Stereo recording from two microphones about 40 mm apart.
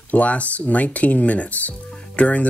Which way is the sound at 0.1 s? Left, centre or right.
Left.